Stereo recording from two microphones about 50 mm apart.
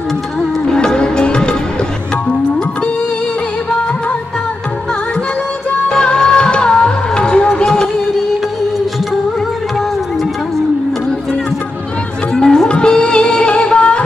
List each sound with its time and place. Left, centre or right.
0.7 s music: centre
5.9 s music: centre
12.4 s music: centre